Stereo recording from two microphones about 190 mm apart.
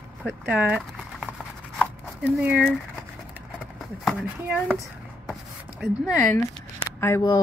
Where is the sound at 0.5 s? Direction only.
5° right (ahead or behind).